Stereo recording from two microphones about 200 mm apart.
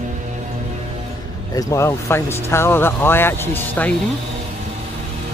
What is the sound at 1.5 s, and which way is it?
Speech, 15° left (ahead or behind).